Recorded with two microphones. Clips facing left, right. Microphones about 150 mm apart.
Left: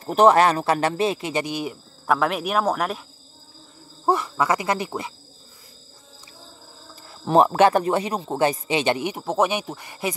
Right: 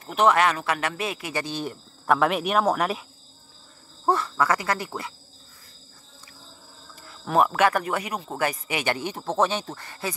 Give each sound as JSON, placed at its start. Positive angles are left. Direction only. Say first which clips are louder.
{"t": 0.0, "sound": "speech", "louder": "left 5 dB", "side_deg": 35}
{"t": 4.0, "sound": "speech", "louder": "left 2 dB", "side_deg": 15}
{"t": 7.1, "sound": "speech", "louder": "left 4 dB", "side_deg": 30}